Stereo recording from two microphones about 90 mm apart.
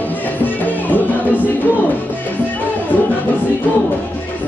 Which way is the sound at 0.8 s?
20° left (ahead or behind).